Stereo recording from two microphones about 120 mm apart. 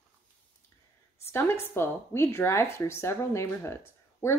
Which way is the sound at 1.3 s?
20° left (ahead or behind).